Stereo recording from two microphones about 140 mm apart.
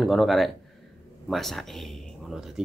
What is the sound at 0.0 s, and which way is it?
Speech, centre (ahead or behind).